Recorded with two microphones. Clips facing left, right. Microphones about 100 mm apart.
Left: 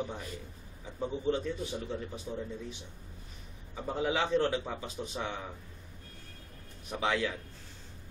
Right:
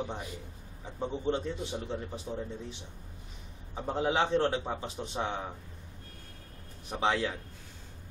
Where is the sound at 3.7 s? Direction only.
30° right (ahead or behind).